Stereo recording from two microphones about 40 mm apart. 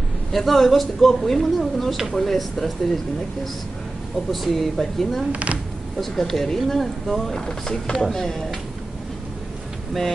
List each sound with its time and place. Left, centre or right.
0.3 s speech: centre
4.3 s speech: centre
5.3 s speech: right
5.9 s speech: centre